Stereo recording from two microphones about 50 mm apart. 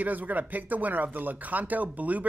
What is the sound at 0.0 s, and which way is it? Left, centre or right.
Speech, right.